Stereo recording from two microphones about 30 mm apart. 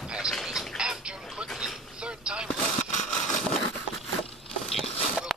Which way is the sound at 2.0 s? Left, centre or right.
Right.